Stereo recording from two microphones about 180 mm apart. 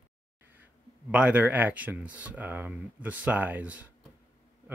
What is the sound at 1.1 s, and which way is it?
Speech, 5° right (ahead or behind).